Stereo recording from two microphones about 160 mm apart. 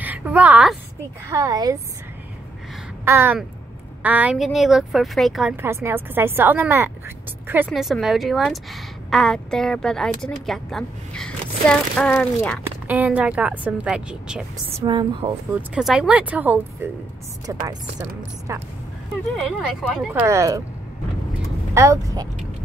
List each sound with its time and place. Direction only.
0.0 s a woman's voice: 10° right (ahead or behind)
1.3 s speech: 25° right (ahead or behind)
3.1 s a woman's voice: 15° right (ahead or behind)
5.6 s speech: 15° right (ahead or behind)
7.7 s a woman's voice: centre (ahead or behind)
12.8 s speech: 10° right (ahead or behind)
14.7 s speech: 30° right (ahead or behind)
15.5 s speech: 5° right (ahead or behind)
17.5 s speech: 20° right (ahead or behind)
19.9 s speech: 5° right (ahead or behind)
21.7 s speech: 20° right (ahead or behind)